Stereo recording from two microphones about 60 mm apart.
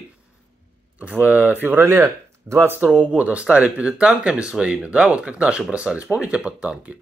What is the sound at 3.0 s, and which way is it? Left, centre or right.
Speech, right.